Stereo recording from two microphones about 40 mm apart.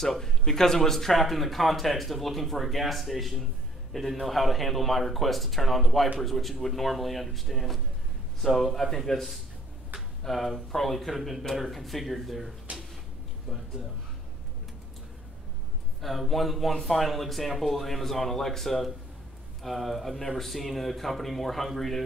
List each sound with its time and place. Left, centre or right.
0.0 s speech: centre
12.7 s drawer open or close: right
16.0 s speech: centre